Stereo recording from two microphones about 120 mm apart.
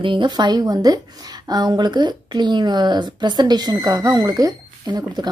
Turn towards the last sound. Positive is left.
turn(degrees=-35)  # may be behind; listen again after turning